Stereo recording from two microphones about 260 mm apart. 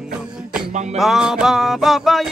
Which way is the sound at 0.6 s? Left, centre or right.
Right.